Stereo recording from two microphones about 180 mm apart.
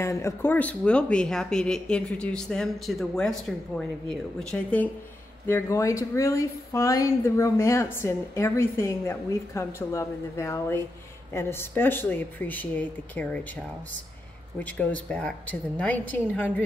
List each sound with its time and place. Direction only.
0.0 s speech: 15° left (ahead or behind)
5.5 s speech: 15° left (ahead or behind)